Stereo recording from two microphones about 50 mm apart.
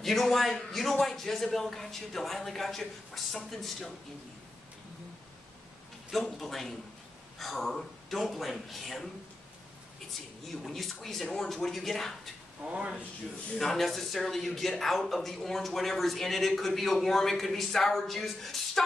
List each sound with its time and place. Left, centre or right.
0.0 s speech: centre
6.1 s speech: centre
10.6 s speech: centre
12.6 s speech: right
13.6 s speech: centre